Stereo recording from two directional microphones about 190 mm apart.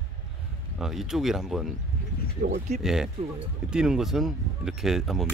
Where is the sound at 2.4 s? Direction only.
50° right (ahead or behind).